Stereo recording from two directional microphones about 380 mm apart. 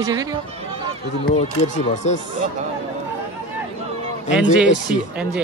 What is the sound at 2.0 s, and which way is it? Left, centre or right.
Speech, centre.